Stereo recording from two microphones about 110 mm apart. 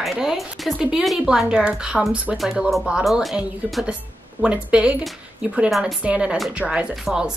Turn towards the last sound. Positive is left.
turn(degrees=-5)  # may be behind; listen again after turning